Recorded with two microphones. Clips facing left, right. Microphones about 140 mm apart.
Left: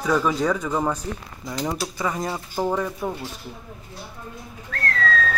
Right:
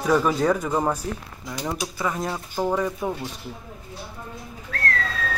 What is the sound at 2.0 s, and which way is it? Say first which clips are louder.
Speech: even; centre (ahead or behind).